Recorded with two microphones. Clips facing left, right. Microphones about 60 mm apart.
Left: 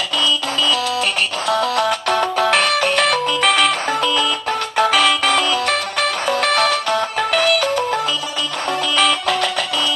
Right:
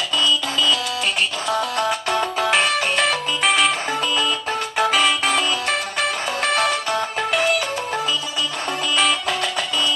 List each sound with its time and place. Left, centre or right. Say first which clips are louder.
1.5 s music: left 5 dB; left
4.5 s music: left 3 dB; centre
4.9 s music: left 2 dB; left
6.9 s music: left 3 dB; centre
8.9 s music: left 3 dB; left